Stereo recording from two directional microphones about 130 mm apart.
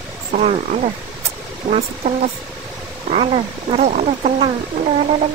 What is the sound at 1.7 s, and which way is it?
Speech, 60° right (ahead or behind).